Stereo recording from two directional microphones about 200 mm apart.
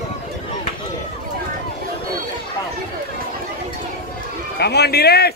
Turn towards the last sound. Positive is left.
turn(degrees=50)  # may be behind; listen again after turning